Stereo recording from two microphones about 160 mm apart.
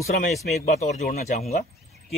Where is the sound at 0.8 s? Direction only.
45° left (ahead or behind).